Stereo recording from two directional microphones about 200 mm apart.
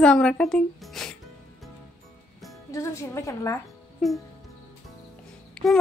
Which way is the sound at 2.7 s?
15° left (ahead or behind).